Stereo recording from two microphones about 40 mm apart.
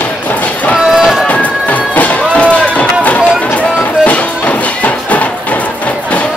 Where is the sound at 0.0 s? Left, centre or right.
Left.